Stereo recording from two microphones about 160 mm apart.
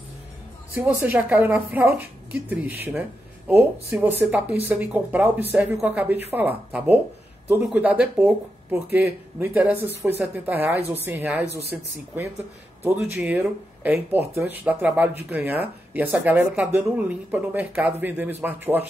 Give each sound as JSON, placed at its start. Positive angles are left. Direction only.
{"t": 0.7, "sound": "speech", "side_deg": -10}